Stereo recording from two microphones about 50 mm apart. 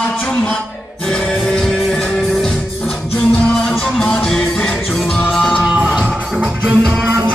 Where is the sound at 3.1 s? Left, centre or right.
Left.